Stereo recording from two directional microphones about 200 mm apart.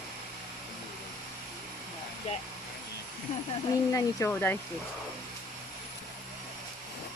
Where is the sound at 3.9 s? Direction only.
15° left (ahead or behind).